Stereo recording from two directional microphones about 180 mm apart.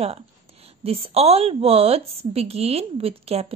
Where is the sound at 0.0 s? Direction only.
35° right (ahead or behind).